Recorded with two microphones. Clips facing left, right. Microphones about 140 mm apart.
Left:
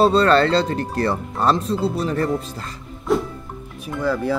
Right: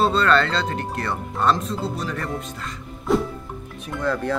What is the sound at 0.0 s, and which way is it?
Speech, 35° left (ahead or behind).